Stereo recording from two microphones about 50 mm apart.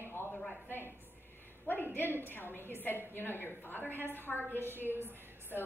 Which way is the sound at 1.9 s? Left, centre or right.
Left.